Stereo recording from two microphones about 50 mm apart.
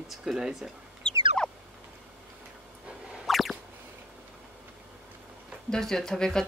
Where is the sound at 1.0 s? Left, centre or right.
Centre.